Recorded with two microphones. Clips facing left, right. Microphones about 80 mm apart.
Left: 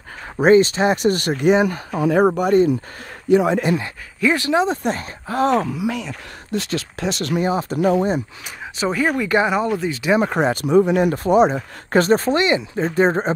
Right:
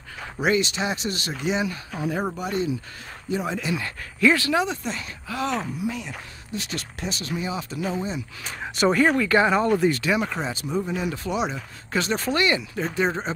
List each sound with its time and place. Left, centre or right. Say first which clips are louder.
0.4 s speech: left 10 dB; left
1.9 s speech: left 11 dB; left
3.3 s speech: left 11 dB; left
3.8 s speech: even; left
4.8 s speech: left 8 dB; left
5.7 s speech: left 6 dB; left
7.4 s speech: left 12 dB; left
8.7 s speech: right 1 dB; centre
9.2 s speech: left 2 dB; centre
9.8 s speech: right 3 dB; centre
10.3 s speech: left 12 dB; left
12.4 s speech: left 5 dB; left
12.9 s speech: left 8 dB; left